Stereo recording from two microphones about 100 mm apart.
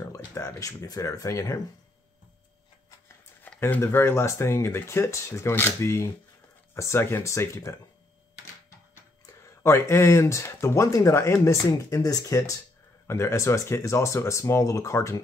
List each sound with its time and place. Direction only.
0.0 s speech: 30° left (ahead or behind)
3.4 s speech: 20° left (ahead or behind)
9.2 s speech: 25° left (ahead or behind)